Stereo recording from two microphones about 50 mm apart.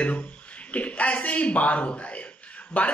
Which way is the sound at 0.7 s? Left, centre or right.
Left.